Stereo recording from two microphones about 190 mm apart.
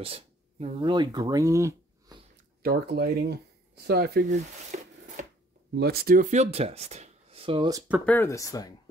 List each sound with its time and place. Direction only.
0.0 s speech: 30° right (ahead or behind)
2.6 s speech: 55° right (ahead or behind)
4.3 s a sound: 40° right (ahead or behind)
5.8 s speech: 55° right (ahead or behind); by 7.8 s 25° right (ahead or behind)
8.0 s speech: 10° left (ahead or behind)